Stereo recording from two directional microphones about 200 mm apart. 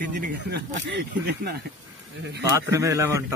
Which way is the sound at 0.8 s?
55° right (ahead or behind).